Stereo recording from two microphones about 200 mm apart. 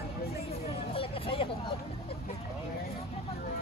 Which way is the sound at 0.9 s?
25° left (ahead or behind).